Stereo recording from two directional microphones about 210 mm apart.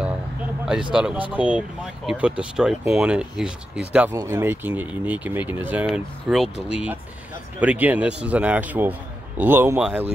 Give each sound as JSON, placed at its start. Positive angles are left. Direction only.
{"t": 0.9, "sound": "speech", "side_deg": -5}